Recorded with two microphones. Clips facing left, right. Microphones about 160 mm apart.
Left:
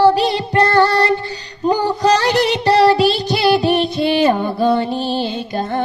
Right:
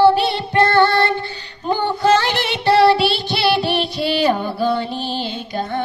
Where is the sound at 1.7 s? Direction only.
40° left (ahead or behind).